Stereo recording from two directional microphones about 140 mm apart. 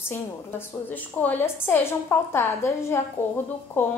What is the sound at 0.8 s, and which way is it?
A woman's voice, 15° left (ahead or behind).